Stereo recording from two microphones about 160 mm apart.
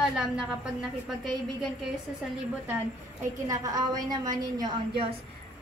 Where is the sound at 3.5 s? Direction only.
25° right (ahead or behind).